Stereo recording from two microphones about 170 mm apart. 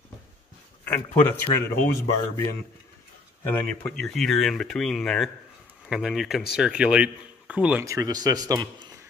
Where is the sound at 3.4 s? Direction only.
10° left (ahead or behind); by 7.8 s 10° right (ahead or behind).